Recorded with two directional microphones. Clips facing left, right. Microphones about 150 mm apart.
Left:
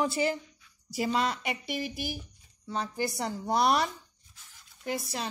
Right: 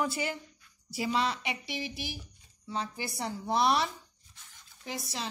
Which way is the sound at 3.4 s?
50° left (ahead or behind).